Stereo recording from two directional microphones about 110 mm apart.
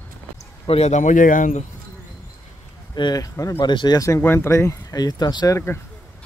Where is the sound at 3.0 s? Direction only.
40° left (ahead or behind).